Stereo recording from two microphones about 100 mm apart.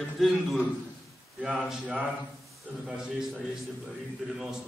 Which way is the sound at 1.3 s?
5° right (ahead or behind).